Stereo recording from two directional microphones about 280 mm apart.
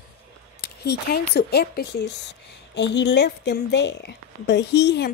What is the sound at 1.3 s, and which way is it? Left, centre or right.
A woman's voice, left.